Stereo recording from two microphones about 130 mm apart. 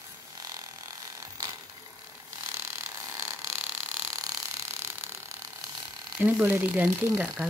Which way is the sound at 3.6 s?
10° right (ahead or behind).